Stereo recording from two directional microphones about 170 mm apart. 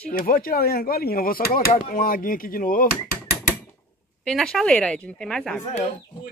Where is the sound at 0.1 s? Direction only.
55° left (ahead or behind).